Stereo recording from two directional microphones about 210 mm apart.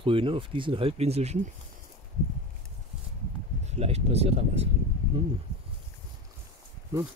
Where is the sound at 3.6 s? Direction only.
30° right (ahead or behind).